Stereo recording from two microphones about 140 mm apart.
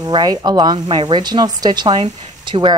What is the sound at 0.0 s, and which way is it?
Speech, 30° right (ahead or behind).